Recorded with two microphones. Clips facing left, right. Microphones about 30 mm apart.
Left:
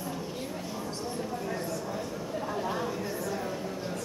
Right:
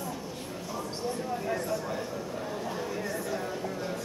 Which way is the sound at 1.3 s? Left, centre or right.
Centre.